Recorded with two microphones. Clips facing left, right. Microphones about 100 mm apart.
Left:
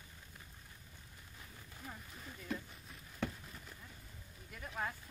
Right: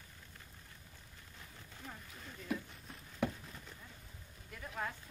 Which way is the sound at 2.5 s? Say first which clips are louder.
Right 3 dB; 10° right (ahead or behind).